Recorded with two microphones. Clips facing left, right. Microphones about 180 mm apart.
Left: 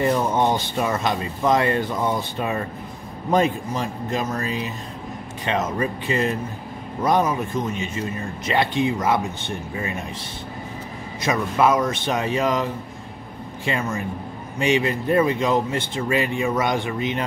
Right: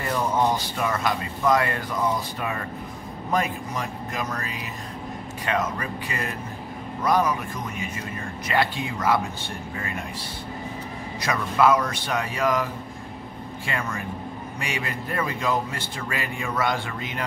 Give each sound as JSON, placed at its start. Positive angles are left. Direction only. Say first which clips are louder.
{"t": 0.0, "sound": "speech", "louder": "left 4 dB", "side_deg": 25}
{"t": 11.2, "sound": "speech", "louder": "left 1 dB", "side_deg": 20}
{"t": 13.7, "sound": "speech", "louder": "left 5 dB", "side_deg": 25}